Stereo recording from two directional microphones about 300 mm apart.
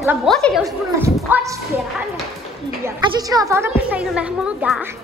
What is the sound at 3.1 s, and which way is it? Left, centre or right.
A woman's voice, centre.